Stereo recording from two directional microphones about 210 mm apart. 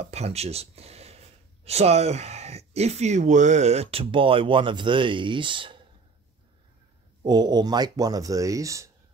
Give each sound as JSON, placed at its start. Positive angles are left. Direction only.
{"t": 0.0, "sound": "speech", "side_deg": -30}
{"t": 7.2, "sound": "speech", "side_deg": -20}